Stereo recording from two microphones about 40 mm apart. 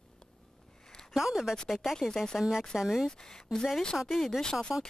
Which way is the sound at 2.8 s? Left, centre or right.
Centre.